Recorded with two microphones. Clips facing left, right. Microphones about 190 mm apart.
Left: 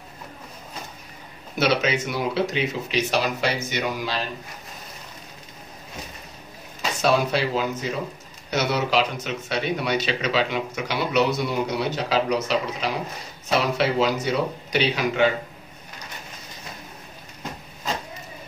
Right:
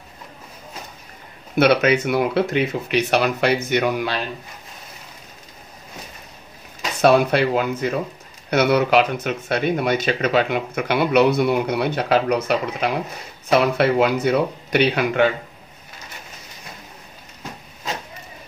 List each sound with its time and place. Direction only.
1.6 s speech: 60° right (ahead or behind)
7.0 s speech: 60° right (ahead or behind)